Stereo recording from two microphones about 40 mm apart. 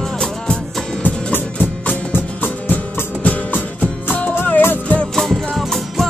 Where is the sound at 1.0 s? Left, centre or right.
Left.